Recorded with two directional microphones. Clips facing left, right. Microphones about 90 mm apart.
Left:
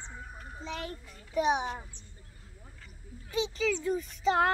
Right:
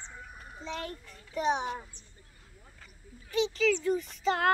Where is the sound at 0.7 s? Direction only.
10° left (ahead or behind).